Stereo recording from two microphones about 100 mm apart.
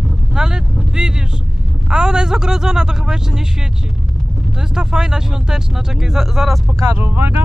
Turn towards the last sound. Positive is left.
turn(degrees=-20)  # may be behind; listen again after turning